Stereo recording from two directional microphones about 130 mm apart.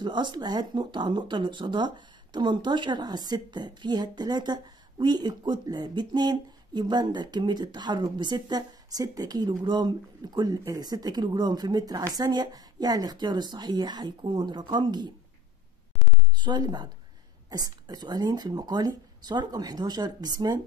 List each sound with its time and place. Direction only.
0.0 s speech: 35° right (ahead or behind)
16.3 s speech: 35° right (ahead or behind)